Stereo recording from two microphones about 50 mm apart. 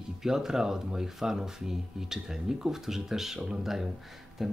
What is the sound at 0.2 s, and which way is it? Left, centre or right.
A man's voice, centre.